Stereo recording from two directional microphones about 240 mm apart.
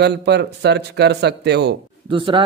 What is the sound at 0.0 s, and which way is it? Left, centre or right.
Speech, right.